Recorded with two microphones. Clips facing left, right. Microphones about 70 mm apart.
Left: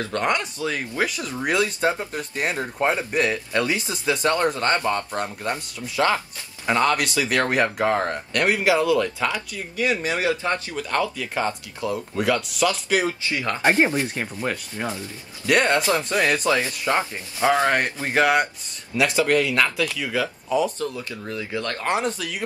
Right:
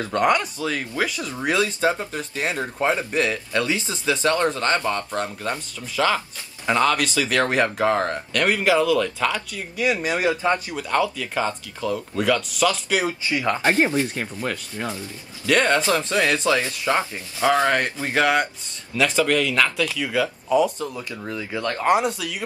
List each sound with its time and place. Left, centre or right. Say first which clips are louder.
0.0 s speech: right 4 dB; centre
0.3 s speech: right 3 dB; centre
9.8 s speech: right 1 dB; centre
11.8 s speech: right 1 dB; centre
12.2 s speech: right 1 dB; centre
13.3 s speech: right 3 dB; right
13.6 s speech: left 2 dB; centre
20.8 s speech: left 1 dB; centre